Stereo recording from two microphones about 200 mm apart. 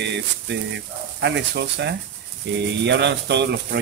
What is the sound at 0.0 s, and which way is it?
Speech, 60° right (ahead or behind).